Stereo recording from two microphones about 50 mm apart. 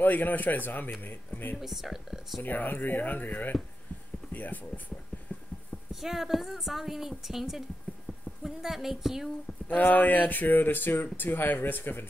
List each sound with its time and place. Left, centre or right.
0.0 s speech: left
1.6 s a woman's voice: centre
2.4 s speech: left
5.9 s a woman's voice: centre
9.7 s speech: left